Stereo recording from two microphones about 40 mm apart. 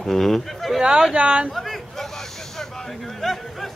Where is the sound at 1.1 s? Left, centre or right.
Right.